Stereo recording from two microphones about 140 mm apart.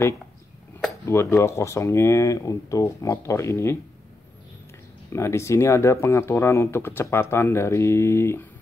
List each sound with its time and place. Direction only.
1.0 s speech: 20° left (ahead or behind)
5.1 s speech: 20° left (ahead or behind)